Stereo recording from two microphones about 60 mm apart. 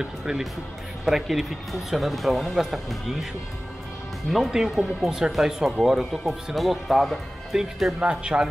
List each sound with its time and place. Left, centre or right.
0.0 s speech: centre
4.3 s speech: centre
8.0 s speech: centre